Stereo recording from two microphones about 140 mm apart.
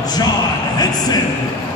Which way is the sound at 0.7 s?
30° left (ahead or behind).